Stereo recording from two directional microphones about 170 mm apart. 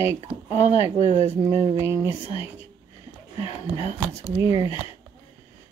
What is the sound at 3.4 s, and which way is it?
Speech, 30° left (ahead or behind).